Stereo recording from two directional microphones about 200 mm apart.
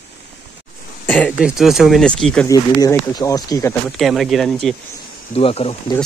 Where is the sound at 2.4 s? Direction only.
15° left (ahead or behind).